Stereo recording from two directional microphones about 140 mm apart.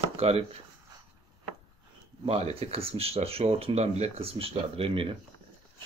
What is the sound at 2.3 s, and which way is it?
Speech, 45° right (ahead or behind).